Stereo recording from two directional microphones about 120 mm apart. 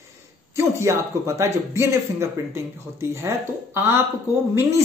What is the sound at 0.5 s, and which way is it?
A woman's voice, 25° right (ahead or behind).